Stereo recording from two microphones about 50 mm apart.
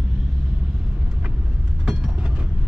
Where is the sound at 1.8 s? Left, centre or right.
Centre.